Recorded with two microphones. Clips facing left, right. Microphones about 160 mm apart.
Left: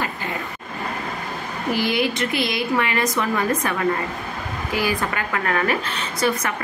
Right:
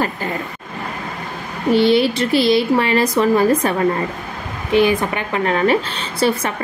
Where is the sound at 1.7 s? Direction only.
30° right (ahead or behind).